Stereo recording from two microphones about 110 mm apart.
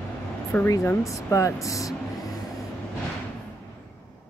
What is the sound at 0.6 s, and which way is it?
Speech, 30° left (ahead or behind).